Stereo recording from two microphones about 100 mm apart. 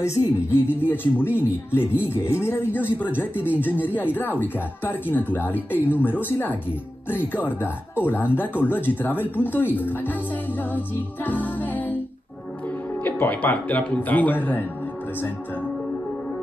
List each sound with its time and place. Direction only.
0.2 s speech: 25° left (ahead or behind)
11.2 s music: 15° left (ahead or behind)
13.0 s speech: 15° left (ahead or behind)